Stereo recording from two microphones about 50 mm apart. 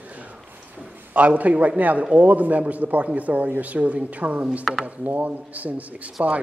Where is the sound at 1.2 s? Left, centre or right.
Right.